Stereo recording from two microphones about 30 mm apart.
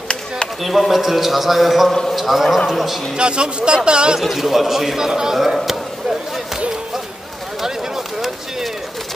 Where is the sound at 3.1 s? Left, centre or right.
Right.